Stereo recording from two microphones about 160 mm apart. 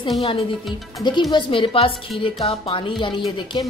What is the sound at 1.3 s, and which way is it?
A woman's voice, 30° left (ahead or behind).